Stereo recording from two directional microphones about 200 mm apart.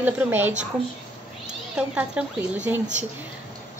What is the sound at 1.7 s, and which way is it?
Speech, 5° right (ahead or behind).